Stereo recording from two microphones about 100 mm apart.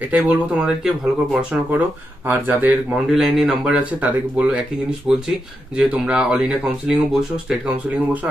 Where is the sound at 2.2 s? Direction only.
20° right (ahead or behind).